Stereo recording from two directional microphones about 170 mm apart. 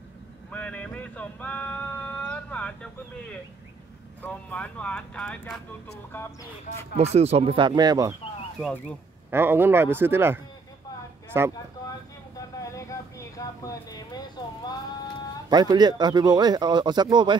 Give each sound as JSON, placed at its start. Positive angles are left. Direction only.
{"t": 0.5, "sound": "a sound", "side_deg": 10}
{"t": 7.0, "sound": "speech", "side_deg": -40}
{"t": 8.5, "sound": "speech", "side_deg": 5}
{"t": 9.3, "sound": "speech", "side_deg": -15}
{"t": 12.7, "sound": "vehicle", "side_deg": 20}
{"t": 15.5, "sound": "speech", "side_deg": -25}